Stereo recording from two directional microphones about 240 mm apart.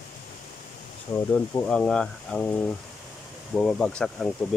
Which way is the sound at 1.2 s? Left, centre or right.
Centre.